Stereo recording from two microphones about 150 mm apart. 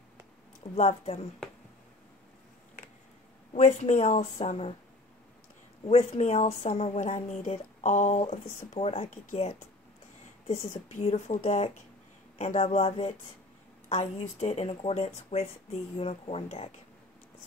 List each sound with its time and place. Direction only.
0.7 s speech: 50° left (ahead or behind)
3.5 s speech: 50° left (ahead or behind)
5.9 s speech: 45° left (ahead or behind)
10.9 s speech: 45° left (ahead or behind)